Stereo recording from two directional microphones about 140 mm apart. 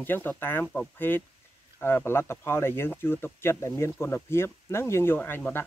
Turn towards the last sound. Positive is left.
turn(degrees=15)  # may be behind; listen again after turning